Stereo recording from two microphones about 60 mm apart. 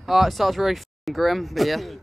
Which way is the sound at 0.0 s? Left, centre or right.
Centre.